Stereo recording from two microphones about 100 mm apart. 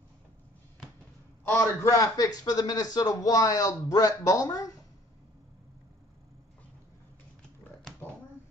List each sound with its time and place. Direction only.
1.5 s a man's voice: 25° left (ahead or behind)